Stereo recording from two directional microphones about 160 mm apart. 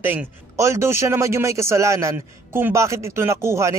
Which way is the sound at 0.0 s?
10° right (ahead or behind).